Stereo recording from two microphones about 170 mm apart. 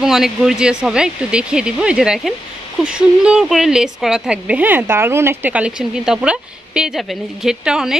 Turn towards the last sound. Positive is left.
turn(degrees=-5)  # may be behind; listen again after turning